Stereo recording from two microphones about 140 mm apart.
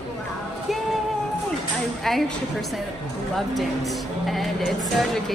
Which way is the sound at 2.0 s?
Centre (ahead or behind).